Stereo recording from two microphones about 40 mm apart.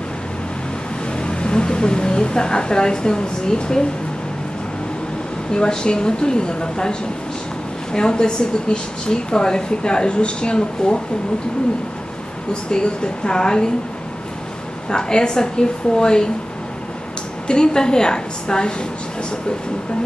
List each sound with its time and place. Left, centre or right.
1.2 s a woman's voice: left
5.5 s a woman's voice: centre
12.7 s a woman's voice: left
14.9 s a woman's voice: centre
17.5 s a woman's voice: left